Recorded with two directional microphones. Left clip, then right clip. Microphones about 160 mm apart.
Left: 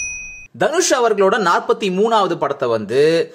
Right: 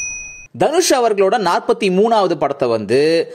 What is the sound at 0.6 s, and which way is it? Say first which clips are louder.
Speech: right 2 dB; 45° right (ahead or behind).